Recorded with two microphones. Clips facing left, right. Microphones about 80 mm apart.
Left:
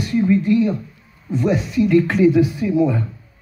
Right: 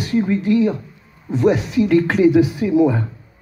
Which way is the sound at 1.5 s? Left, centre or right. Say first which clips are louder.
Even; right.